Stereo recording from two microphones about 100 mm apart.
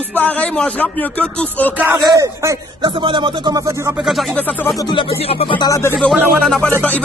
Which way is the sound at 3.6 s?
35° right (ahead or behind).